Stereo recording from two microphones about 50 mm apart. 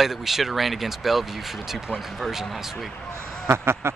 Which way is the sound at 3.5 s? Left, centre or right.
Right.